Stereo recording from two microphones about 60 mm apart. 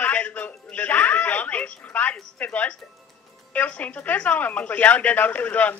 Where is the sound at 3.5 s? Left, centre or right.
Left.